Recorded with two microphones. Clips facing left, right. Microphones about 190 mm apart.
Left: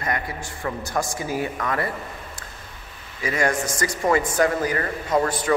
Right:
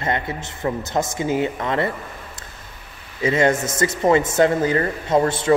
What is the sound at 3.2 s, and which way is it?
Speech, 25° right (ahead or behind).